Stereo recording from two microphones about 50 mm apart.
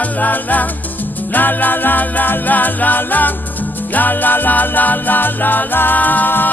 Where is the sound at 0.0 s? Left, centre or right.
Left.